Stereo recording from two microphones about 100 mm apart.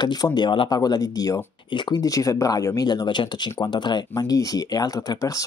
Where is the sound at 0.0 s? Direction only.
45° left (ahead or behind).